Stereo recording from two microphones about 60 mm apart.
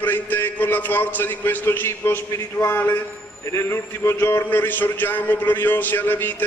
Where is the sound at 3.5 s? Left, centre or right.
Left.